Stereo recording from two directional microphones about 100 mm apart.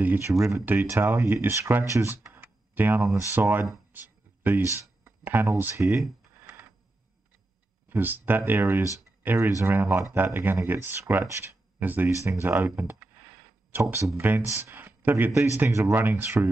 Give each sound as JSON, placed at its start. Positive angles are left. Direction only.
{"t": 0.0, "sound": "speech", "side_deg": -20}
{"t": 0.3, "sound": "speech", "side_deg": -30}
{"t": 3.9, "sound": "a sound", "side_deg": -20}
{"t": 7.9, "sound": "speech", "side_deg": -20}